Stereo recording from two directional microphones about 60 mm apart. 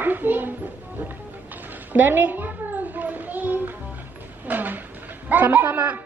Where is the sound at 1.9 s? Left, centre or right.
Right.